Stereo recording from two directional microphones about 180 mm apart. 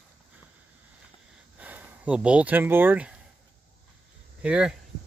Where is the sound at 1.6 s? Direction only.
10° right (ahead or behind).